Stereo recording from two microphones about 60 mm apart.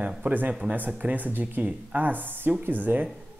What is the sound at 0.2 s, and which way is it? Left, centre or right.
Speech, right.